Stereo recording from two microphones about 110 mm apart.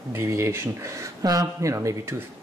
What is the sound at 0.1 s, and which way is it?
Speech, 25° right (ahead or behind).